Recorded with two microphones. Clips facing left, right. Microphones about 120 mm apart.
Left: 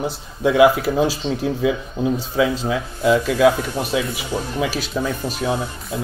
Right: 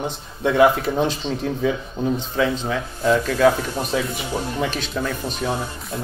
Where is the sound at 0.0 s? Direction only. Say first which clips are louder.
Left 3 dB; 5° left (ahead or behind).